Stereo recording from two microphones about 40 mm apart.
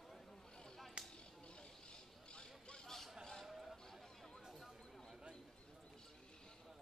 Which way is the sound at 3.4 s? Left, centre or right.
Centre.